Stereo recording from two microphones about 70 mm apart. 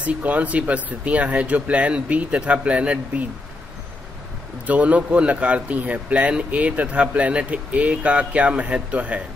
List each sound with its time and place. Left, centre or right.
0.0 s speech: right
4.6 s speech: right